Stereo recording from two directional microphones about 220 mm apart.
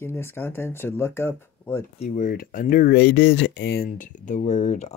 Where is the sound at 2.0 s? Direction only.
35° left (ahead or behind).